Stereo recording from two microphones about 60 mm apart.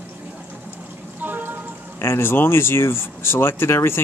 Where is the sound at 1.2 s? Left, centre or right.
Right.